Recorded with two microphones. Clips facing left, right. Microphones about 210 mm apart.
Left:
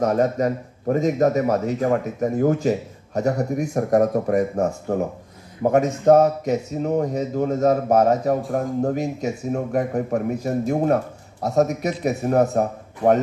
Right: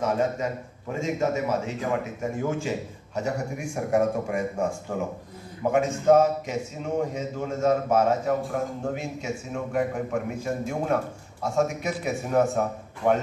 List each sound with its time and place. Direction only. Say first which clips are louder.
0.0 s speech: left 6 dB; 40° left (ahead or behind)